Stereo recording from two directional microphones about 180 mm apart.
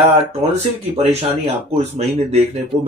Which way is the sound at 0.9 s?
35° right (ahead or behind).